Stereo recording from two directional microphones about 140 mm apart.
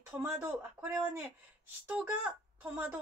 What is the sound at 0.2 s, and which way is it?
A woman's voice, 15° right (ahead or behind).